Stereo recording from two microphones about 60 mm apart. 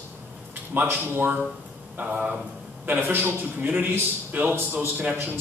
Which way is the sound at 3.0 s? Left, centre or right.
Right.